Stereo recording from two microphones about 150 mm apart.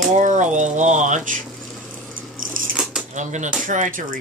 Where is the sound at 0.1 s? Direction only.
55° right (ahead or behind).